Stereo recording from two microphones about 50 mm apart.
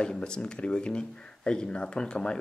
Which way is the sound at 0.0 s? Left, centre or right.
Centre.